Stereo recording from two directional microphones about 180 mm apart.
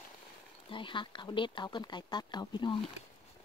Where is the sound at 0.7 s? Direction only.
25° left (ahead or behind).